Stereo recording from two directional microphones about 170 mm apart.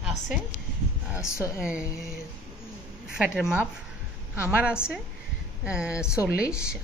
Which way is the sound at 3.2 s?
5° right (ahead or behind).